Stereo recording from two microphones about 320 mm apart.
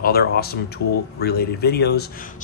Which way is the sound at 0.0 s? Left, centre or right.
Left.